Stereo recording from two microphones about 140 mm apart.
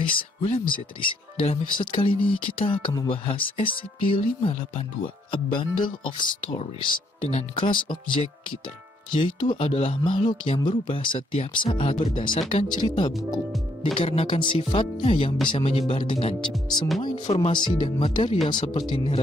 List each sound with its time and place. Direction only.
0.0 s speech: 35° left (ahead or behind)
9.1 s speech: 35° left (ahead or behind)